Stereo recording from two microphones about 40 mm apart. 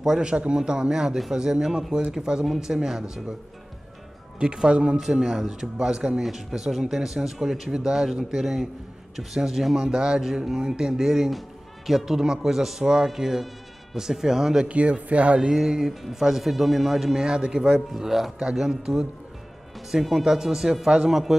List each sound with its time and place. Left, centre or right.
0.2 s a man's voice: right
2.4 s a man's voice: centre
4.4 s speech: right
5.0 s a man's voice: centre
14.7 s speech: right
15.5 s a man's voice: centre
17.2 s a man's voice: centre